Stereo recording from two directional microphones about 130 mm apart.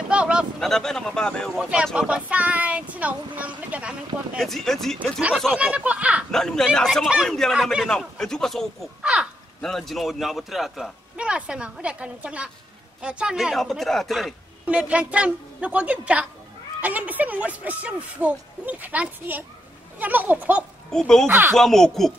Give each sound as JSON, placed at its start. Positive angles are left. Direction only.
{"t": 0.1, "sound": "a sound", "side_deg": -10}
{"t": 0.6, "sound": "a man's voice", "side_deg": 5}
{"t": 1.6, "sound": "a man's voice", "side_deg": -10}
{"t": 4.4, "sound": "a man's voice", "side_deg": 0}
{"t": 6.3, "sound": "a man's voice", "side_deg": 5}
{"t": 20.9, "sound": "a man's voice", "side_deg": 5}
{"t": 21.3, "sound": "a man's voice", "side_deg": -15}
{"t": 21.5, "sound": "a man's voice", "side_deg": 5}